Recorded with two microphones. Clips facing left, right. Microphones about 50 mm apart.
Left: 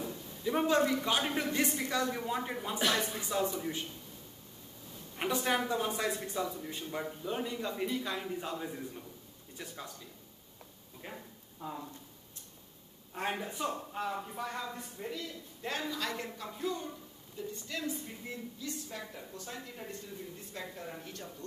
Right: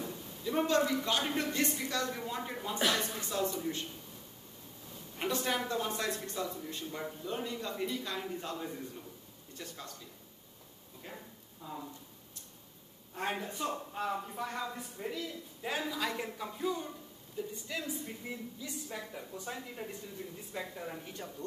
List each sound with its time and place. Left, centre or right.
0.4 s a man's voice: centre
5.1 s a woman's voice: centre
11.6 s speech: left
13.1 s a woman's voice: centre